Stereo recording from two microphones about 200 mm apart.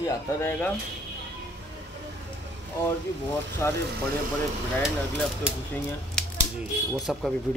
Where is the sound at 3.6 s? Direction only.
15° left (ahead or behind).